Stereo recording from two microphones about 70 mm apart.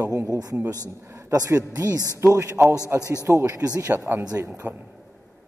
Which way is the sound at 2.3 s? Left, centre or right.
Right.